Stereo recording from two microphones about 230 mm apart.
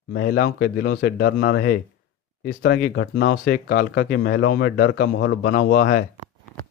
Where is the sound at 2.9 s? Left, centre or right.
Left.